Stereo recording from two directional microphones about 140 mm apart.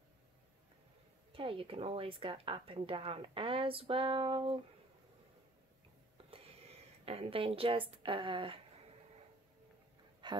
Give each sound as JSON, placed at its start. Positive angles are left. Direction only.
{"t": 1.3, "sound": "a woman's voice", "side_deg": -40}
{"t": 6.3, "sound": "a woman's voice", "side_deg": -45}
{"t": 10.2, "sound": "a sound", "side_deg": -35}